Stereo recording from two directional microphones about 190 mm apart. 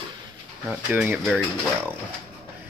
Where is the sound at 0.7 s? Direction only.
10° right (ahead or behind).